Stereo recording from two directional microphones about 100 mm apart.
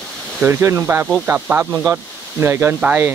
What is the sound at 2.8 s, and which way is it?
Speech, 15° right (ahead or behind).